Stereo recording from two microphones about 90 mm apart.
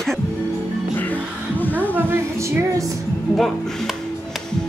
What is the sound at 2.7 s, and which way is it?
Speech, 40° right (ahead or behind).